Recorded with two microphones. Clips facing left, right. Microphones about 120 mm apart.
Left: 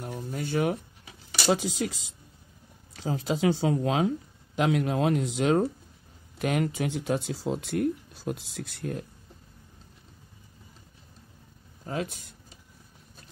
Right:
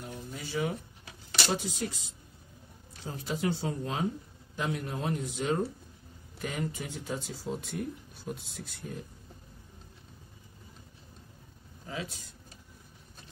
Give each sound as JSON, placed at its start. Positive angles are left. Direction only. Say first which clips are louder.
{"t": 0.0, "sound": "a sound", "louder": "left 7 dB", "side_deg": 55}
{"t": 1.5, "sound": "speech", "louder": "left 8 dB", "side_deg": 90}
{"t": 11.8, "sound": "speech", "louder": "left 7 dB", "side_deg": 50}